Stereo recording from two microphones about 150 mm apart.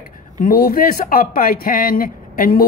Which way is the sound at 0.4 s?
75° left (ahead or behind).